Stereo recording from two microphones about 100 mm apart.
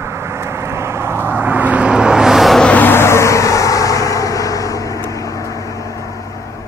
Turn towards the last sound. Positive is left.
turn(degrees=35)  # may be behind; listen again after turning